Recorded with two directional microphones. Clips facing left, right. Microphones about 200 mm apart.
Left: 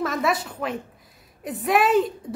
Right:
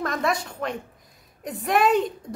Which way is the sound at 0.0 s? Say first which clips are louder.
Left 2 dB; 5° left (ahead or behind).